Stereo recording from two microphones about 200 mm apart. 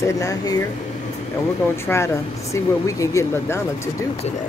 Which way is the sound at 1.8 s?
15° left (ahead or behind).